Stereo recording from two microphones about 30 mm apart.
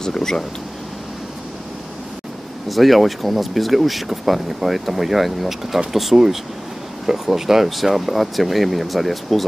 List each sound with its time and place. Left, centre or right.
0.0 s speech: centre
2.7 s speech: centre
6.1 s speech: centre